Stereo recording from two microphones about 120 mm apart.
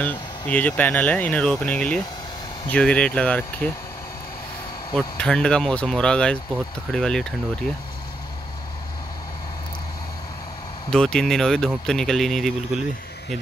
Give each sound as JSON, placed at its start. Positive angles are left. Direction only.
{"t": 0.0, "sound": "speech", "side_deg": 10}
{"t": 4.9, "sound": "speech", "side_deg": 5}
{"t": 10.9, "sound": "speech", "side_deg": 5}